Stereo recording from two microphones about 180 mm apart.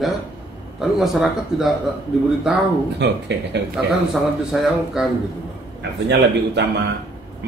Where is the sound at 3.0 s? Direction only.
70° right (ahead or behind).